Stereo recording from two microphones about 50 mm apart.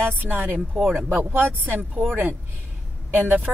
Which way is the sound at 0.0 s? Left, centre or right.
Right.